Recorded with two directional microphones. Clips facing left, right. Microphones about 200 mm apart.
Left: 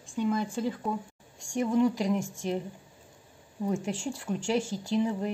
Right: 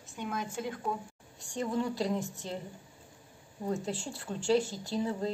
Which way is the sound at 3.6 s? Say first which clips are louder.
Left 3 dB; 10° left (ahead or behind).